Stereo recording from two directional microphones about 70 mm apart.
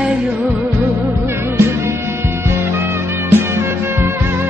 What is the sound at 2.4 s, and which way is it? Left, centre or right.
Music, right.